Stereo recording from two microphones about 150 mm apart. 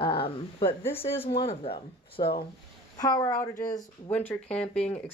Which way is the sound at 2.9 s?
25° left (ahead or behind).